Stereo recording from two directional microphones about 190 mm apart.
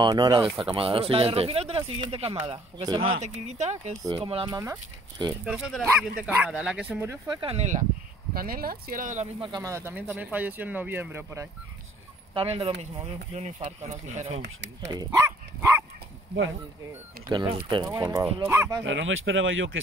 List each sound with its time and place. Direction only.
0.0 s speech: 20° right (ahead or behind)
3.4 s speech: 35° right (ahead or behind)
4.0 s speech: 25° right (ahead or behind)
5.4 s speech: 5° right (ahead or behind)
7.2 s speech: 30° right (ahead or behind)
8.3 s speech: 50° right (ahead or behind)
9.4 s speech: 20° right (ahead or behind)
12.4 s speech: 30° right (ahead or behind)
14.3 s speech: 70° right (ahead or behind)
15.0 s dog: 15° right (ahead or behind)
17.3 s speech: 25° right (ahead or behind)
18.9 s speech: 90° right